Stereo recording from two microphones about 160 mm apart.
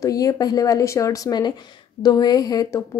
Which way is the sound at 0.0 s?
20° left (ahead or behind).